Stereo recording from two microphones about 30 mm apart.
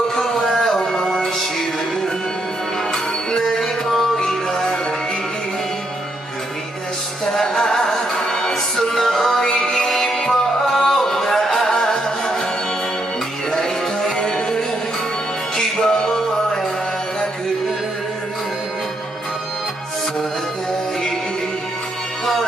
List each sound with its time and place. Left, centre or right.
0.1 s a sound: centre
0.6 s music: left
2.9 s music: centre
7.3 s music: centre
13.5 s music: centre